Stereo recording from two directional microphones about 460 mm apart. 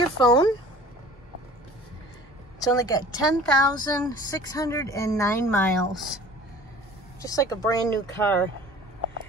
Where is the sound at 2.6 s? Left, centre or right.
Centre.